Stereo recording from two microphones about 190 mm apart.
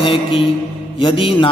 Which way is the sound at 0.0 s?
30° left (ahead or behind).